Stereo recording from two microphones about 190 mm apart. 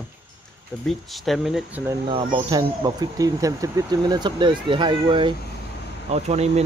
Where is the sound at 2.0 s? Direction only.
25° right (ahead or behind).